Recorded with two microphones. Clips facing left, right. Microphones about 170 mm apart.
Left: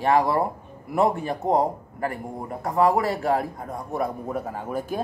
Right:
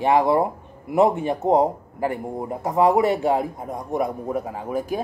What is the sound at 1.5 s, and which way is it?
A man's voice, 25° right (ahead or behind).